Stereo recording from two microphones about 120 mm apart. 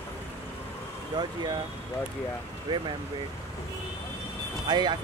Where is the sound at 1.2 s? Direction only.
35° right (ahead or behind).